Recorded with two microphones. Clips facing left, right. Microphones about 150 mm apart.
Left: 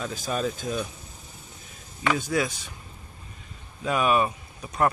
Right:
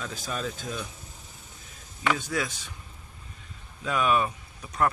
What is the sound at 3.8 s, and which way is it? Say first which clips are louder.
Speech: left 2 dB; 15° left (ahead or behind).